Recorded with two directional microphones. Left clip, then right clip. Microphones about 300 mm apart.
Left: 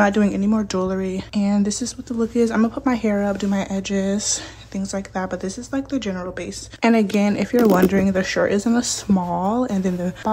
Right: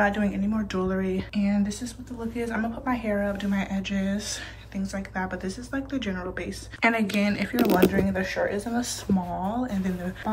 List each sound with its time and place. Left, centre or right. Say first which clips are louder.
0.0 s speech: left 6 dB; centre